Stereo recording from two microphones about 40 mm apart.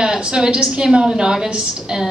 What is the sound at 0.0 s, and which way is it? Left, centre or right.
A woman's voice, centre.